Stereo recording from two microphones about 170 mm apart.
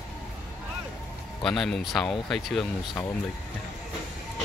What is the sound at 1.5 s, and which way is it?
Speech, 5° left (ahead or behind).